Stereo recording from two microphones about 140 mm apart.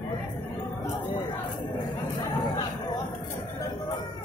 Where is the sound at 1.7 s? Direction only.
30° left (ahead or behind).